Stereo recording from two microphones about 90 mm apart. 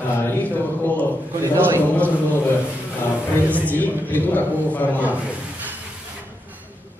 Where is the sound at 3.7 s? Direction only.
20° left (ahead or behind).